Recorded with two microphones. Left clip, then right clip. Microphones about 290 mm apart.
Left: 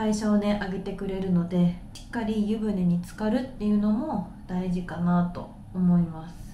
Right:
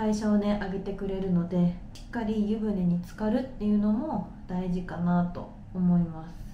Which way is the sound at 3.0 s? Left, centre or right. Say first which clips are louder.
Left 1 dB; centre.